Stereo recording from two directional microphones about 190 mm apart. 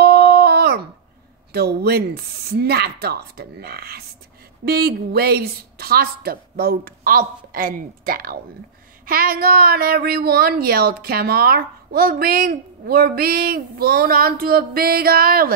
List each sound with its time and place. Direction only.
0.0 s dog: 55° right (ahead or behind)
1.5 s a woman's voice: 55° right (ahead or behind)